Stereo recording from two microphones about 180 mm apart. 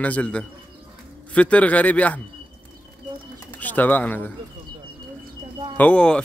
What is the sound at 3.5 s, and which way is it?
Speech, 10° left (ahead or behind).